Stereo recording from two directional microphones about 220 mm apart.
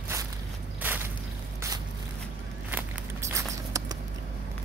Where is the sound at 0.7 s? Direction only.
10° right (ahead or behind).